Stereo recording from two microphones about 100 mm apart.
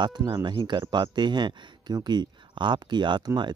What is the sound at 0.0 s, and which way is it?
Speech, 50° right (ahead or behind).